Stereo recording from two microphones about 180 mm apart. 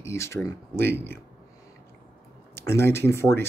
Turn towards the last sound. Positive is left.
turn(degrees=15)  # may be behind; listen again after turning